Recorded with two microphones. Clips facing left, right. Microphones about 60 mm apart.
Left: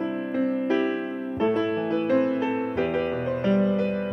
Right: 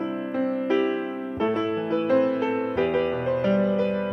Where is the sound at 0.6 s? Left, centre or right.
Right.